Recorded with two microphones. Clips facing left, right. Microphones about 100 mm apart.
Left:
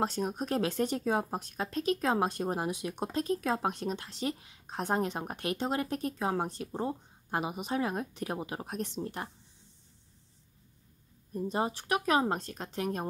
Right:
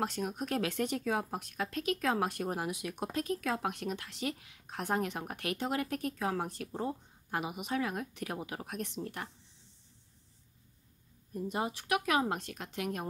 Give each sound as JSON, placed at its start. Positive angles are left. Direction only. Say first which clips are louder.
{"t": 0.0, "sound": "speech", "louder": "left 3 dB", "side_deg": 30}
{"t": 11.3, "sound": "speech", "louder": "left 3 dB", "side_deg": 30}